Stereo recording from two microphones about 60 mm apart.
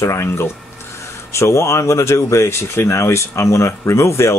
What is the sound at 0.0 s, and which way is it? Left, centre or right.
Speech, left.